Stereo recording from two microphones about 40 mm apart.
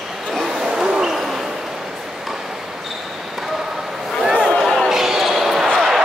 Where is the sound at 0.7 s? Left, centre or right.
Centre.